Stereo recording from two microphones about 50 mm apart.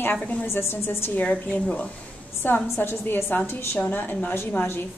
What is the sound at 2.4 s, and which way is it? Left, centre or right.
A woman's voice, left.